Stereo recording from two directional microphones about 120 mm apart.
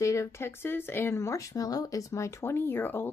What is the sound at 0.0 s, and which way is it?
Speech, 25° left (ahead or behind).